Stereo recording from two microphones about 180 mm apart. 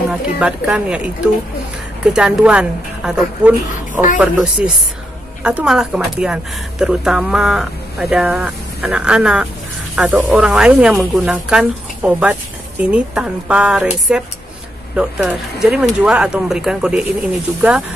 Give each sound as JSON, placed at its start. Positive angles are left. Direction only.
{"t": 0.1, "sound": "speech", "side_deg": -5}